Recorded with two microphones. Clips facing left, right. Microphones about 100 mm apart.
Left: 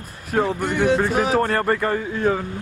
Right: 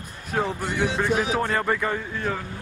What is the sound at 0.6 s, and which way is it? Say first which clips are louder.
Speech: left 7 dB; 55° left (ahead or behind).